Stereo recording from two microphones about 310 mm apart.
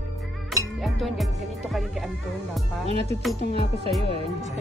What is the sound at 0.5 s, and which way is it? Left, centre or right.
Music, centre.